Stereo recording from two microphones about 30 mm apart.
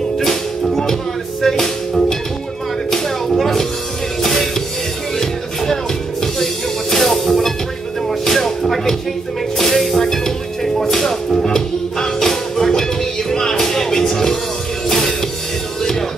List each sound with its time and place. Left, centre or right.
0.2 s music: centre
2.9 s a sound: centre
4.2 s music: centre
6.2 s music: centre
8.1 s a sound: centre
9.6 s music: centre